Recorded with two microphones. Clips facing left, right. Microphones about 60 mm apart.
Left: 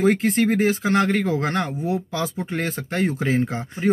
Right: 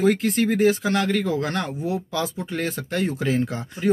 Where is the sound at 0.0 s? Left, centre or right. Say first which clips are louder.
Left 1 dB; left.